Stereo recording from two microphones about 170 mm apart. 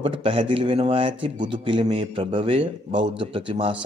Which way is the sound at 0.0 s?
30° right (ahead or behind).